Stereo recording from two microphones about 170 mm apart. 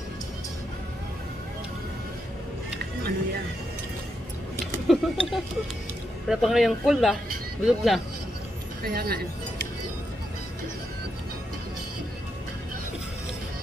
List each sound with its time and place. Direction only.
4.8 s speech: centre (ahead or behind)
8.8 s speech: 60° right (ahead or behind)